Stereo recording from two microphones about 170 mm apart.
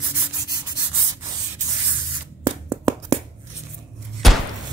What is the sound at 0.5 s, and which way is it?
Sanding, 20° right (ahead or behind).